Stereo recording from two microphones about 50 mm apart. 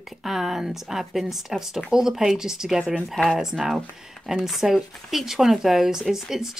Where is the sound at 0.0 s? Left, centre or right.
Centre.